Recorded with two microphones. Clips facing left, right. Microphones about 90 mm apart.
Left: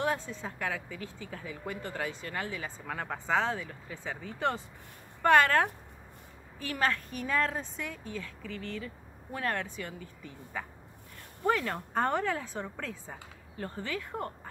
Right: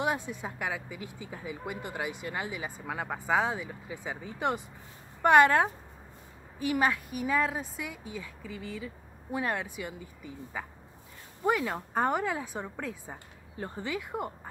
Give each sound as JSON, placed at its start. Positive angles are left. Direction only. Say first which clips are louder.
{"t": 0.0, "sound": "speech", "louder": "right 1 dB", "side_deg": -15}